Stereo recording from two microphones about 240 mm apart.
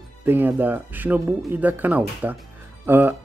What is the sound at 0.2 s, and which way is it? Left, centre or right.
Speech, centre.